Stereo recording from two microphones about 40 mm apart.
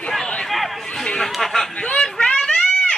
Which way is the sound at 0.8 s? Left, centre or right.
Centre.